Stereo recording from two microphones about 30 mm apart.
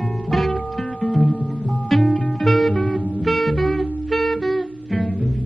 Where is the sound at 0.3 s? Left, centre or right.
Centre.